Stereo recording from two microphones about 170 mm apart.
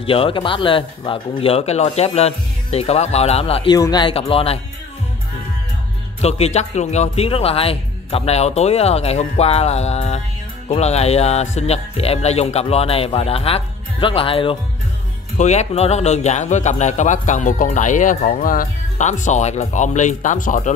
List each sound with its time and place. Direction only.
0.0 s speech: 30° left (ahead or behind)
3.7 s speech: 25° left (ahead or behind)
6.2 s speech: 40° left (ahead or behind)
15.3 s speech: 45° left (ahead or behind)